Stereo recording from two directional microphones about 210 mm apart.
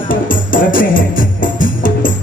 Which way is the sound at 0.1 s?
40° left (ahead or behind).